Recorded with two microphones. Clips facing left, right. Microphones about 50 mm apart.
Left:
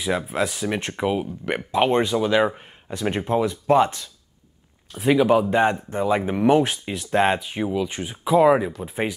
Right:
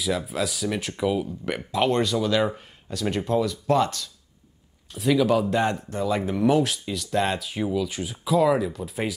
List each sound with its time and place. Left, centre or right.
0.3 s speech: left
7.3 s speech: left